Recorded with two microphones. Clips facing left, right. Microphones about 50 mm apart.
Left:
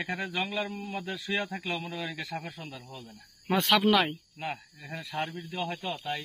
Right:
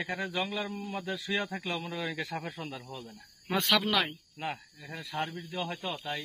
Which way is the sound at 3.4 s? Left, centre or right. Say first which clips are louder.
Left 4 dB; centre.